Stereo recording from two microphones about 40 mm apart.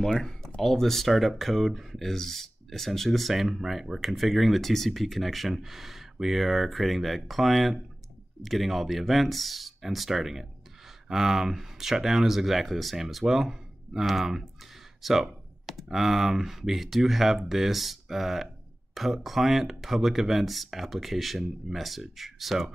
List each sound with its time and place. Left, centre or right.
0.0 s speech: centre